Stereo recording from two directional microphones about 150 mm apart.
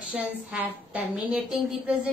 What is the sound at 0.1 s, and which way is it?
A woman's voice, 10° right (ahead or behind).